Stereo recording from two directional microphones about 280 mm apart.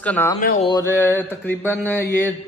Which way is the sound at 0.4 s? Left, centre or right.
Left.